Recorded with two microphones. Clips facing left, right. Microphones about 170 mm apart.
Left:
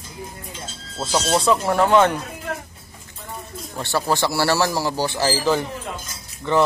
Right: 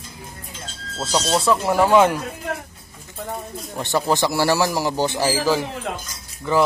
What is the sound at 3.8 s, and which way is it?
A man's voice, 15° right (ahead or behind).